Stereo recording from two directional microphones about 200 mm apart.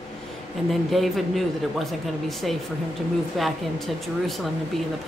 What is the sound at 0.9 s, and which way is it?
Speech, centre (ahead or behind).